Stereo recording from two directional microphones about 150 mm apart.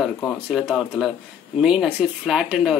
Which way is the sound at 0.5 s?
5° right (ahead or behind).